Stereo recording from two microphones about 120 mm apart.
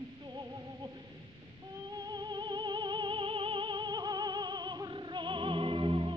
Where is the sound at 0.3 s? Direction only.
35° right (ahead or behind).